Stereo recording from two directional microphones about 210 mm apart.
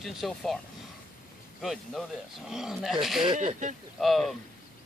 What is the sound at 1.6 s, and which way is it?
Speech, centre (ahead or behind).